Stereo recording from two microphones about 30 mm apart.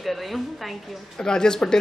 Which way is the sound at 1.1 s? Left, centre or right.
Left.